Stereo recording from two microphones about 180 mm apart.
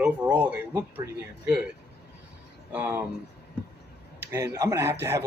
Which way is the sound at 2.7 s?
10° right (ahead or behind).